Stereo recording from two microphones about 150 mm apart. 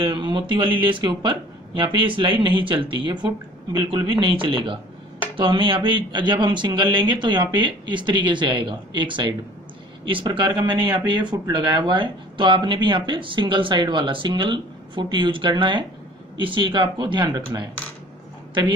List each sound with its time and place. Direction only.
0.0 s a woman's voice: 30° right (ahead or behind)